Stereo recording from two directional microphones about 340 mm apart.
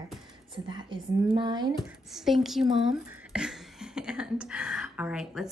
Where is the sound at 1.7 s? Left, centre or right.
Centre.